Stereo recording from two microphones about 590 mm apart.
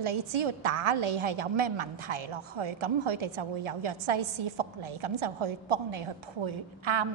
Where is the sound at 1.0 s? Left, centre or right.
Right.